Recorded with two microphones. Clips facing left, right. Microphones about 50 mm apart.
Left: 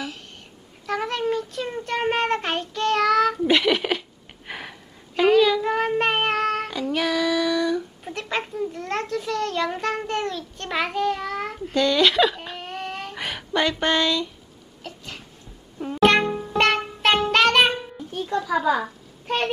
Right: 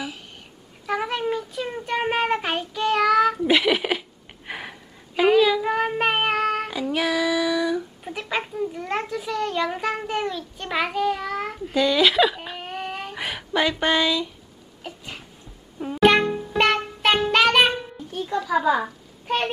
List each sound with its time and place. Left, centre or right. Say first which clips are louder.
0.8 s child singing: even; centre
3.4 s a sound: even; centre
4.5 s child singing: right 1 dB; centre
14.8 s sneeze: right 1 dB; centre
15.8 s music: right 1 dB; centre